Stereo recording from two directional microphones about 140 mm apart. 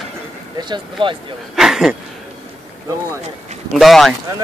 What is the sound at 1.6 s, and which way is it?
Speech, centre (ahead or behind).